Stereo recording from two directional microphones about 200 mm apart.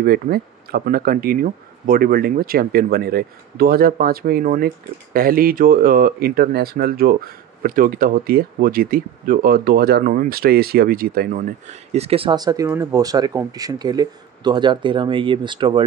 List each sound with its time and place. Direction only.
0.0 s speech: 50° right (ahead or behind)
11.9 s speech: 30° right (ahead or behind)